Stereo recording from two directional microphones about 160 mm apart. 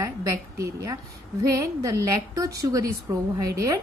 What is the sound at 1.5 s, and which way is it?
A woman's voice, 20° right (ahead or behind).